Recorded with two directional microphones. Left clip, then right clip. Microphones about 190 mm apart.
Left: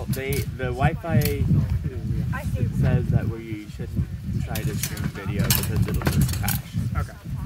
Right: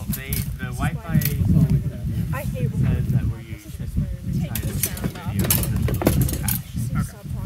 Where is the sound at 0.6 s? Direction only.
50° left (ahead or behind).